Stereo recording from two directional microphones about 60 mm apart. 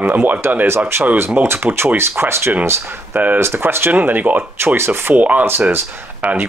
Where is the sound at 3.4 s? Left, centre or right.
Right.